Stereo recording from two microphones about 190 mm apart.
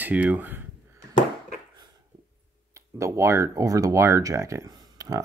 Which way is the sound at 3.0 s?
15° right (ahead or behind).